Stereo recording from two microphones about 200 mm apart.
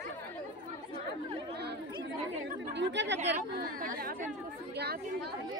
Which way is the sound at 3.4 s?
45° right (ahead or behind).